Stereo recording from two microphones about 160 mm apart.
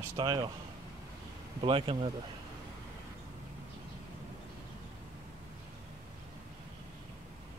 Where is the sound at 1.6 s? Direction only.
35° right (ahead or behind).